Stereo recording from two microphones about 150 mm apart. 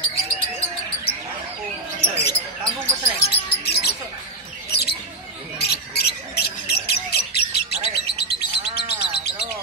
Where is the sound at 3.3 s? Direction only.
90° left.